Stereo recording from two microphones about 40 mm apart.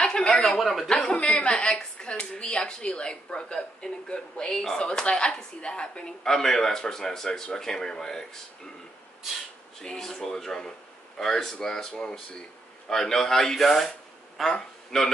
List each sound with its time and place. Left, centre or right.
0.6 s speech: centre
0.8 s a woman's voice: centre
6.2 s speech: centre
9.9 s speech: centre